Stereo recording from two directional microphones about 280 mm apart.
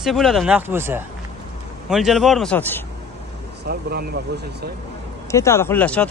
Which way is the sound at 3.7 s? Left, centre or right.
Right.